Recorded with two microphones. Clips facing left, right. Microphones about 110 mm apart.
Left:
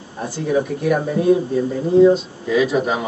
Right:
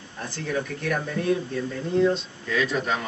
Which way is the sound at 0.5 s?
15° left (ahead or behind).